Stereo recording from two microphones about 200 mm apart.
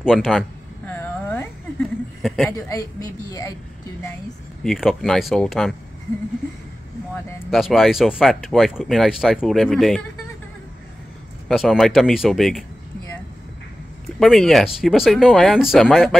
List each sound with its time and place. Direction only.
0.0 s speech: centre (ahead or behind)
0.8 s a sound: 10° left (ahead or behind)
2.2 s speech: 5° left (ahead or behind)
2.5 s a woman's voice: 15° left (ahead or behind)
4.6 s speech: centre (ahead or behind)
7.5 s speech: centre (ahead or behind)
11.4 s speech: centre (ahead or behind)
14.2 s speech: centre (ahead or behind)